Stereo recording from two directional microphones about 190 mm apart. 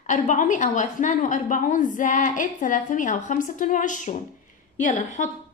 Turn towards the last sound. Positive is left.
turn(degrees=40)  # may be behind; listen again after turning